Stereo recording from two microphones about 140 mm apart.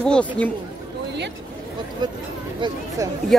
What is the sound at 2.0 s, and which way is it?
Speech, 30° right (ahead or behind).